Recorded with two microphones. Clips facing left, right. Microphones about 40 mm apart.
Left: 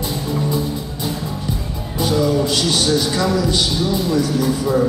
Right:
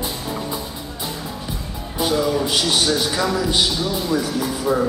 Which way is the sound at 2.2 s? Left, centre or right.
Centre.